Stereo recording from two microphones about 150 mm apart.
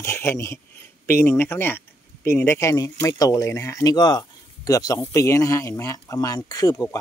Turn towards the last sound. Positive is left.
turn(degrees=25)  # may be behind; listen again after turning